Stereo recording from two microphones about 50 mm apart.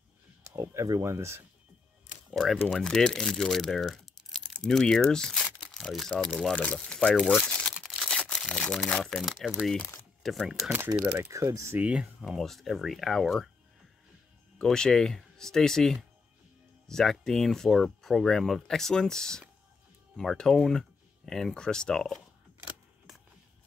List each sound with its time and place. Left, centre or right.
0.7 s speech: right
2.3 s speech: centre
6.6 s speech: left
7.3 s crumpling: centre
7.7 s a sound: centre
8.5 s speech: centre
9.4 s speech: centre
11.1 s speech: right
12.0 s speech: centre
12.4 s speech: centre
14.6 s speech: centre